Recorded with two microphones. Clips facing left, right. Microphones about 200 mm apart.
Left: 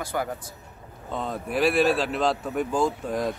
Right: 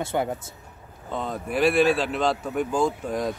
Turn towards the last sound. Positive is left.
turn(degrees=0)  # may be behind; listen again after turning